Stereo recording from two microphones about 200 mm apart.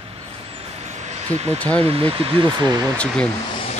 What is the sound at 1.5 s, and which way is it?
Speech, 5° left (ahead or behind).